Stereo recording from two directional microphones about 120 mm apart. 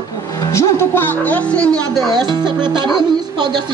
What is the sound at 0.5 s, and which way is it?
Speech, 20° left (ahead or behind).